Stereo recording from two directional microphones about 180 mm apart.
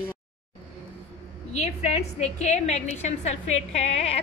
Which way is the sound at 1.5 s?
40° left (ahead or behind).